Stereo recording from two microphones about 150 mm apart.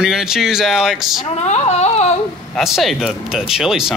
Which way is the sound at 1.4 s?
45° left (ahead or behind).